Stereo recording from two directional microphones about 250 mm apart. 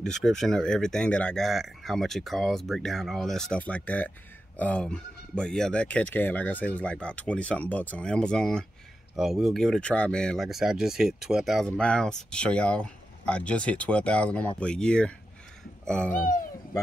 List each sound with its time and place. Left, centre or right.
0.0 s speech: centre
16.1 s speech: left